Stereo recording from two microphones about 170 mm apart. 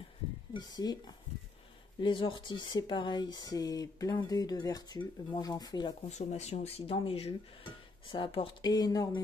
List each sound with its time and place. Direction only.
0.5 s speech: 25° left (ahead or behind)
6.0 s speech: 40° left (ahead or behind); by 9.2 s 25° left (ahead or behind)